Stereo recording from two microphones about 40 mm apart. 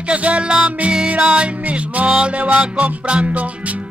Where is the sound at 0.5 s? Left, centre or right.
Right.